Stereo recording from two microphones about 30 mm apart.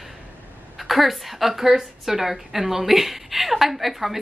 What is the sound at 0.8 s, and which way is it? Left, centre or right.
A woman's voice, centre.